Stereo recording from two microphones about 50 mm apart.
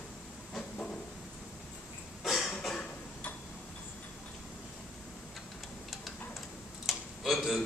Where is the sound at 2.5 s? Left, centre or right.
Centre.